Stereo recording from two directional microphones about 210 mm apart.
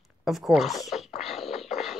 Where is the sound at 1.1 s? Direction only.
30° left (ahead or behind).